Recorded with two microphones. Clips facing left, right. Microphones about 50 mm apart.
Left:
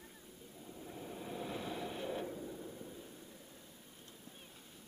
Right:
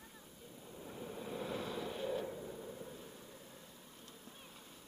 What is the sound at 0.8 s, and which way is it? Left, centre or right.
Vehicle, centre.